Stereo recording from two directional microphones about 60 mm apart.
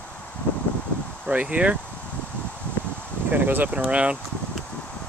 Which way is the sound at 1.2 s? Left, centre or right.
Right.